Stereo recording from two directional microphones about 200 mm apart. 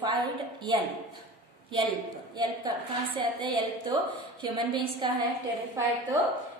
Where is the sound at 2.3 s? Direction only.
20° right (ahead or behind).